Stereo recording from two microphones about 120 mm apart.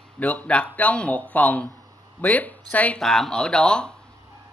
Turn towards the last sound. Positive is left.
turn(degrees=5)  # may be behind; listen again after turning